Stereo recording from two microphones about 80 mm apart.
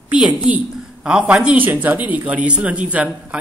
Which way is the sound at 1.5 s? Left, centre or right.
Right.